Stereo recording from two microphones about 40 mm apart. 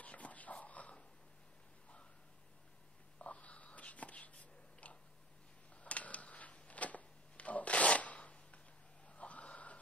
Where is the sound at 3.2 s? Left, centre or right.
Left.